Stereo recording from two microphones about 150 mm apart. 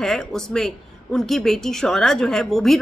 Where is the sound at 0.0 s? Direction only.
5° left (ahead or behind).